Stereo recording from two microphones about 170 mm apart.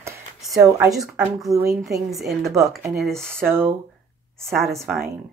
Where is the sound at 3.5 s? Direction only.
15° right (ahead or behind).